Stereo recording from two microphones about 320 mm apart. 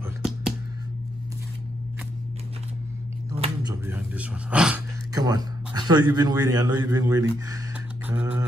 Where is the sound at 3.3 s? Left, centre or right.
Centre.